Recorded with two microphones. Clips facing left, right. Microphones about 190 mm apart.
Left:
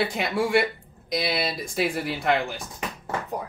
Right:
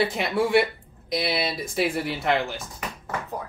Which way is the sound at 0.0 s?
Centre (ahead or behind).